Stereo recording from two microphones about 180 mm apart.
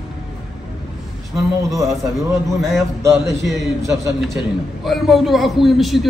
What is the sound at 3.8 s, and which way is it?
Speech, 15° right (ahead or behind).